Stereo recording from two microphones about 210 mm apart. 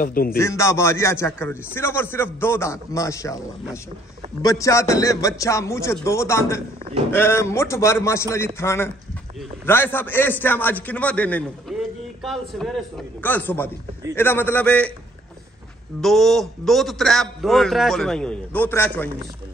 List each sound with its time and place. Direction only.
0.0 s a man's voice: 45° left (ahead or behind)
0.4 s a man's voice: 15° left (ahead or behind)
4.4 s a man's voice: 15° left (ahead or behind)
11.7 s a sound: centre (ahead or behind)
12.2 s a man's voice: centre (ahead or behind)
16.0 s a man's voice: centre (ahead or behind)